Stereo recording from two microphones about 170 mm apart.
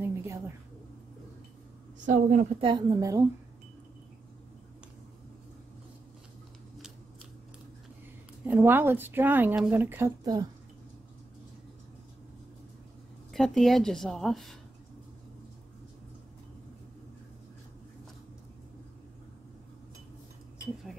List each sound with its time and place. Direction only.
0.0 s a sound: 15° right (ahead or behind)
2.0 s a woman's voice: 45° right (ahead or behind)
2.6 s a woman's voice: 25° right (ahead or behind)
8.5 s speech: 10° right (ahead or behind)
13.3 s speech: centre (ahead or behind)